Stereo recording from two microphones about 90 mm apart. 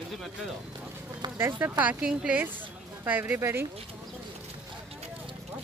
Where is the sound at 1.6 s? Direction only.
15° right (ahead or behind).